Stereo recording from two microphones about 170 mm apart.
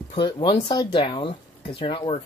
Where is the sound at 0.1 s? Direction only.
30° left (ahead or behind).